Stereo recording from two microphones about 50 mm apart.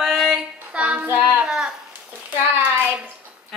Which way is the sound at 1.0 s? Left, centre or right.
Right.